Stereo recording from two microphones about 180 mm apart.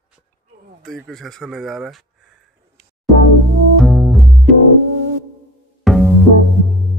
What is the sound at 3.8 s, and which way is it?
Double bass, centre (ahead or behind).